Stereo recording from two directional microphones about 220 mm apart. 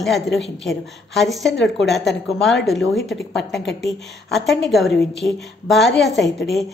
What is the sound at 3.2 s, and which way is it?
Speech, 50° left (ahead or behind).